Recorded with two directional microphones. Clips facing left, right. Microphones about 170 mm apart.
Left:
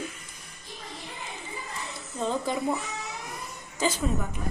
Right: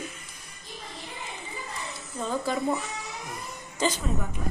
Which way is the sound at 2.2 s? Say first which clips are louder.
Even; 20° left (ahead or behind).